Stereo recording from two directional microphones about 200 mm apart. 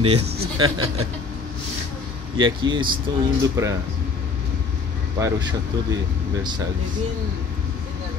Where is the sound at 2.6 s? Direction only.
25° right (ahead or behind).